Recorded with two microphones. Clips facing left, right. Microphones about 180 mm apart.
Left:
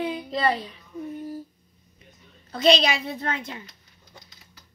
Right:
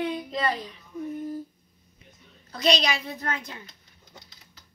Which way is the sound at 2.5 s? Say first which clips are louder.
Left 4 dB; 30° left (ahead or behind).